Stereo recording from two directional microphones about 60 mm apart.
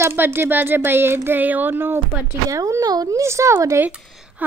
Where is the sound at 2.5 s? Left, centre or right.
Right.